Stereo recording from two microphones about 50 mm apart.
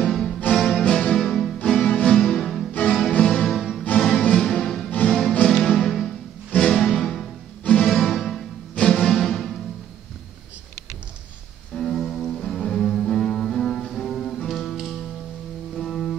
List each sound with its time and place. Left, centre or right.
0.0 s music: centre
3.1 s music: centre
7.9 s music: centre
8.7 s music: centre
11.7 s cello: centre
14.5 s music: centre